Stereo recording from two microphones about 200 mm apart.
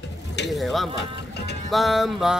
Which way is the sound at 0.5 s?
Centre (ahead or behind).